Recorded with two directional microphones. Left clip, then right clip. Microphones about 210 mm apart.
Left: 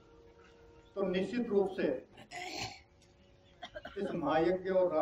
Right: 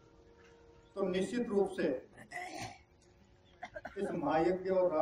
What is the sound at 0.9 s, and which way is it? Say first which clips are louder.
Speech: even; 50° right (ahead or behind).